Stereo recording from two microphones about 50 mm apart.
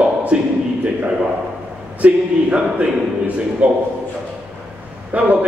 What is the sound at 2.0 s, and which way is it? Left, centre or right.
A man's voice, right.